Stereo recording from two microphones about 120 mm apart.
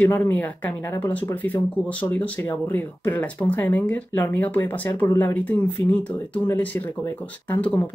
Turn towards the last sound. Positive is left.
turn(degrees=15)  # may be behind; listen again after turning